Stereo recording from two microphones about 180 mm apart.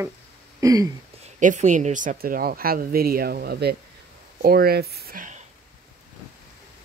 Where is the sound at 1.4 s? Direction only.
45° right (ahead or behind).